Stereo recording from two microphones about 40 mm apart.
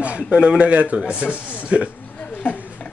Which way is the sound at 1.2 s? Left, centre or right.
Left.